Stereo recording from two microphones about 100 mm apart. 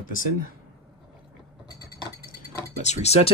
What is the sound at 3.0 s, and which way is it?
Speech, 90° left.